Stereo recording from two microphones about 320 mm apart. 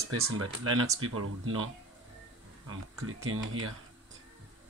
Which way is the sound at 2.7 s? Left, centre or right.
Right.